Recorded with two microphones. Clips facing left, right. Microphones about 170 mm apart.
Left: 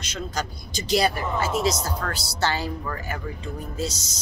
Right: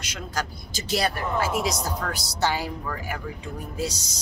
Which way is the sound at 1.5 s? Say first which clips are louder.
Left 2 dB; 10° right (ahead or behind).